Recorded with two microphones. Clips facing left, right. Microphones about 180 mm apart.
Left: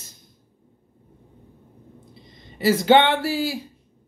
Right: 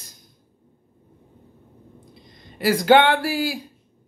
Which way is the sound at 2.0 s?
25° left (ahead or behind).